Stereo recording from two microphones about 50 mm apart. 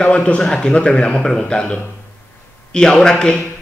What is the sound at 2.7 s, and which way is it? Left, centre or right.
Speech, centre.